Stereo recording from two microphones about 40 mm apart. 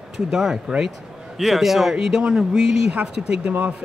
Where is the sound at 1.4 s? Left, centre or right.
Centre.